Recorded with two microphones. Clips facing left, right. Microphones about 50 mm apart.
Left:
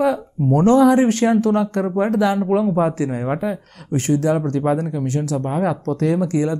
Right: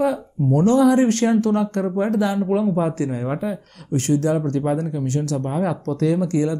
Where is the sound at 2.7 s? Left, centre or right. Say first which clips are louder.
Left 3 dB; left.